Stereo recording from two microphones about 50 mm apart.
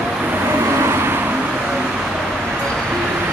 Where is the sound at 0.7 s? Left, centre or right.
Right.